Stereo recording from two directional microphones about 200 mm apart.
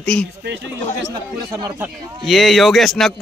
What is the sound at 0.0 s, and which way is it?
Speech, 5° left (ahead or behind).